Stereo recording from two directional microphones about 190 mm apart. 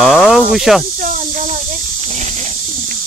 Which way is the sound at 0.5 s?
Centre (ahead or behind).